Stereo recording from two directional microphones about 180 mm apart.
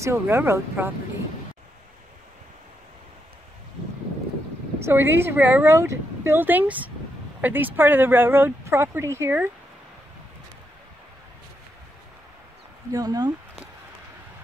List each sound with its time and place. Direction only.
0.0 s speech: 15° right (ahead or behind)
4.8 s speech: 15° right (ahead or behind)
12.9 s speech: 20° right (ahead or behind)